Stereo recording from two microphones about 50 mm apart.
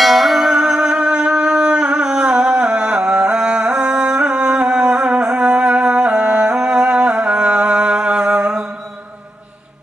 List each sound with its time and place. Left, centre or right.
0.0 s music: centre; by 8.6 s right